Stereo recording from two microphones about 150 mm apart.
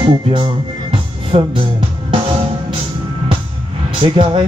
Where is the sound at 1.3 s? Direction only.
40° right (ahead or behind).